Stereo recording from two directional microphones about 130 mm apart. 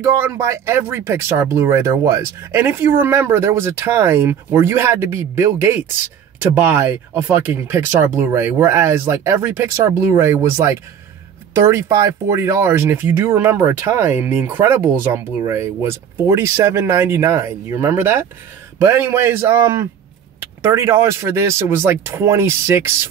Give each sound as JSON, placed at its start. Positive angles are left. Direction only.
{"t": 0.0, "sound": "speech", "side_deg": -20}